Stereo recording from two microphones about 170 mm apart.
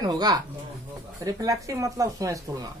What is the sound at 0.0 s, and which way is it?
Speech, 25° right (ahead or behind).